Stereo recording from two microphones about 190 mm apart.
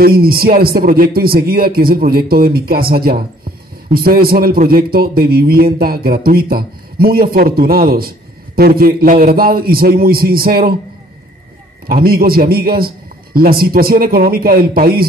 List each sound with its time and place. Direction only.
0.0 s a man's voice: 50° right (ahead or behind)
11.9 s a man's voice: 50° right (ahead or behind)